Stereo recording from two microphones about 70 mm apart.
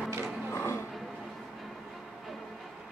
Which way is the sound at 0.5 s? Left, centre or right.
Left.